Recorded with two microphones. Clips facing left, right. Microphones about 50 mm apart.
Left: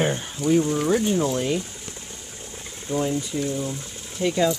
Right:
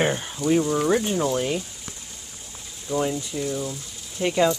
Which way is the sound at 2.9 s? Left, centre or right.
Left.